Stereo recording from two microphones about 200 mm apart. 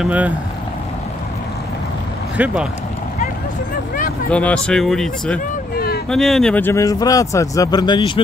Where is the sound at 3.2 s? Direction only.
40° left (ahead or behind).